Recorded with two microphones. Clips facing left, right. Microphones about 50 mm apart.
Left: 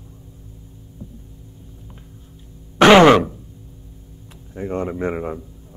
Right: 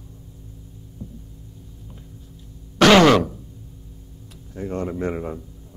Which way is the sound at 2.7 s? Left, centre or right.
Left.